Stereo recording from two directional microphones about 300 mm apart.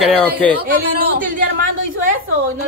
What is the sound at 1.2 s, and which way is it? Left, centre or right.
Speech, right.